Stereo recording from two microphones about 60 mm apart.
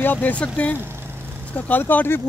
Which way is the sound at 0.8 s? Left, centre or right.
Right.